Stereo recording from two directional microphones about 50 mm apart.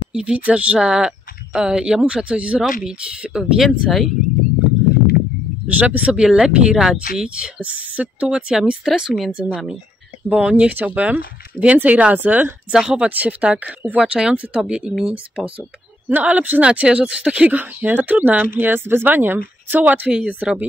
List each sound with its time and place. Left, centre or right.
0.1 s speech: centre
0.7 s speech: centre
2.8 s speech: centre
5.8 s speech: right
6.2 s speech: centre
8.8 s speech: centre
9.3 s speech: centre; by 12.5 s right
12.7 s speech: centre
13.1 s speech: right
14.6 s speech: centre
16.1 s speech: right
17.5 s speech: right
20.1 s speech: centre